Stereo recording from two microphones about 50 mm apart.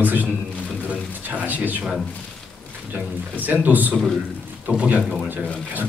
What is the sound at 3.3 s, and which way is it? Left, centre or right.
Speech, right.